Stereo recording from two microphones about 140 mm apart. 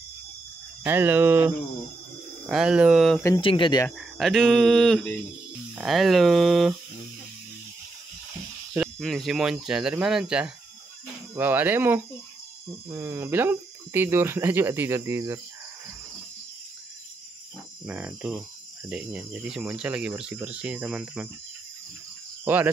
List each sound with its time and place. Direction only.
0.8 s speech: 15° right (ahead or behind)
2.5 s speech: 5° right (ahead or behind)
3.3 s speech: 35° left (ahead or behind)
4.2 s speech: centre (ahead or behind)
8.7 s speech: 5° right (ahead or behind); by 15.4 s 20° right (ahead or behind)
17.8 s speech: 10° right (ahead or behind)
22.4 s speech: 15° right (ahead or behind)